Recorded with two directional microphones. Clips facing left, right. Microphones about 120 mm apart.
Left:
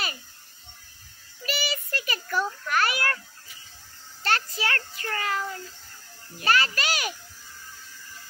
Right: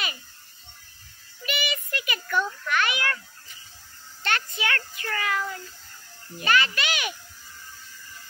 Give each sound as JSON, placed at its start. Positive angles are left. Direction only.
{"t": 1.4, "sound": "a sound", "side_deg": 35}
{"t": 4.2, "sound": "music", "side_deg": 35}
{"t": 4.6, "sound": "child singing", "side_deg": 35}
{"t": 6.4, "sound": "a child's voice", "side_deg": 40}